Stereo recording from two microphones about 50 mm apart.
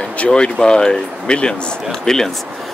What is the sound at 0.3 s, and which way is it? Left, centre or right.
Speech, centre.